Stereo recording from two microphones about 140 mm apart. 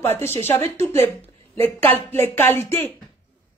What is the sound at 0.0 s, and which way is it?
Speech, 15° left (ahead or behind).